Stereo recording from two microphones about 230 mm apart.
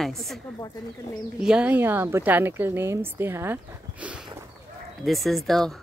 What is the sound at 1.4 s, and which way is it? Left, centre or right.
A woman's voice, centre.